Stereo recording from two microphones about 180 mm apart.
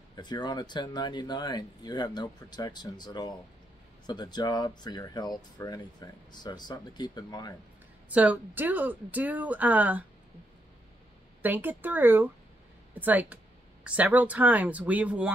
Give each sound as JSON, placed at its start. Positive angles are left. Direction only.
{"t": 0.1, "sound": "speech", "side_deg": 25}
{"t": 8.1, "sound": "speech", "side_deg": -10}
{"t": 11.4, "sound": "speech", "side_deg": -10}